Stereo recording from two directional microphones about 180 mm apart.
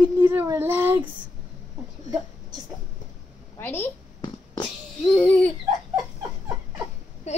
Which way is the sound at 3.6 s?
10° left (ahead or behind).